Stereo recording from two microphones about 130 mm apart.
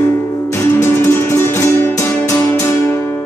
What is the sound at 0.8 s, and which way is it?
Music, 20° left (ahead or behind).